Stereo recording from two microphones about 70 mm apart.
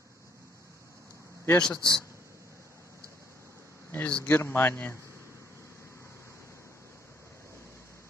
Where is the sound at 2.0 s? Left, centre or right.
Right.